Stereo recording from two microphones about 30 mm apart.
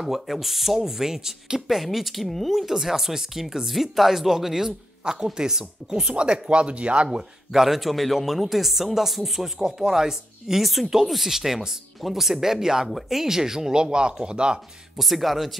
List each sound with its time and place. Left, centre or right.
0.0 s speech: centre
2.2 s speech: centre
2.5 s speech: centre
6.1 s speech: right
6.5 s speech: right
7.5 s speech: centre
9.6 s speech: centre
10.6 s speech: centre
13.7 s speech: right
15.0 s speech: centre